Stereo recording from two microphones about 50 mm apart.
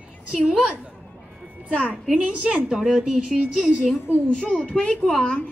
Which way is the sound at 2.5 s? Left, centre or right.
Centre.